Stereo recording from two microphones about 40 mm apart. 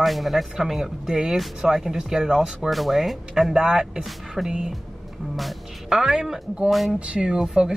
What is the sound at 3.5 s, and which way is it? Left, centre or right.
Speech, centre.